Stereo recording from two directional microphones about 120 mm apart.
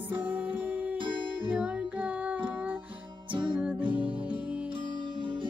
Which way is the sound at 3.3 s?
45° right (ahead or behind).